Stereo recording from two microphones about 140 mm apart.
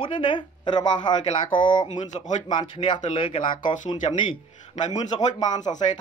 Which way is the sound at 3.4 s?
70° left (ahead or behind).